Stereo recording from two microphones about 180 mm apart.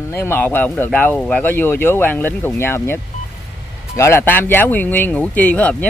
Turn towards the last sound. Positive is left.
turn(degrees=10)  # may be behind; listen again after turning